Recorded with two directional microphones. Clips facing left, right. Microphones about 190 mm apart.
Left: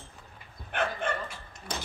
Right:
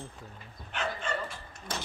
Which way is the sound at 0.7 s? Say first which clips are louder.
Left 3 dB; 55° left (ahead or behind).